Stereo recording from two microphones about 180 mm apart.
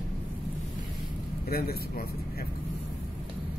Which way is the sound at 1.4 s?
60° left (ahead or behind).